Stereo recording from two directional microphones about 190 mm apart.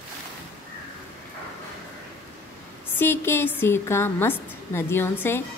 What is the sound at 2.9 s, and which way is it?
A woman's voice, 10° left (ahead or behind).